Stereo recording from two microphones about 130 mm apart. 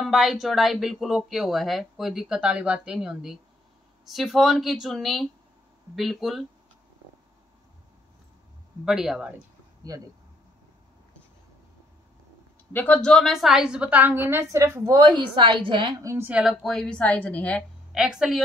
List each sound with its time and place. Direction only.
0.0 s speech: centre (ahead or behind)
8.8 s speech: 5° right (ahead or behind)
12.7 s a woman's voice: 10° left (ahead or behind); by 15.0 s 25° right (ahead or behind)
15.0 s a woman's voice: 35° right (ahead or behind)
16.0 s a woman's voice: 25° right (ahead or behind)
16.3 s a woman's voice: 10° right (ahead or behind)
16.6 s speech: 5° left (ahead or behind)
17.9 s speech: 5° right (ahead or behind)